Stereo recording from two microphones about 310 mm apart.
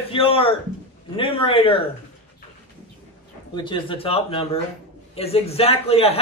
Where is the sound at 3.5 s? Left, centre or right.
Centre.